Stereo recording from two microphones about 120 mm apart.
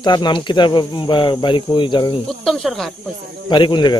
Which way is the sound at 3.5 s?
40° left (ahead or behind).